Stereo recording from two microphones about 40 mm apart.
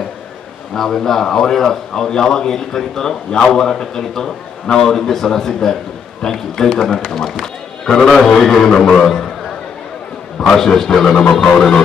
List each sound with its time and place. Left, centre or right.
0.7 s a man's voice: centre
8.7 s a man's voice: centre
10.4 s a man's voice: centre